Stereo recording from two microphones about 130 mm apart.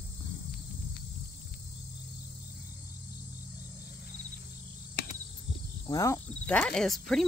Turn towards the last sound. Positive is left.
turn(degrees=0)  # may be behind; listen again after turning